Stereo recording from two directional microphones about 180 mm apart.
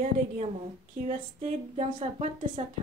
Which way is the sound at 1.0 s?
35° right (ahead or behind).